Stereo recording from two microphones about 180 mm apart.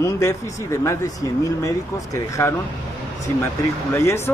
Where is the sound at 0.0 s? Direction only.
15° left (ahead or behind).